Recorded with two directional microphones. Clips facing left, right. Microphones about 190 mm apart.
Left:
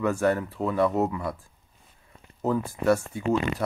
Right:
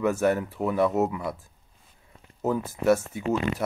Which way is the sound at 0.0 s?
15° right (ahead or behind).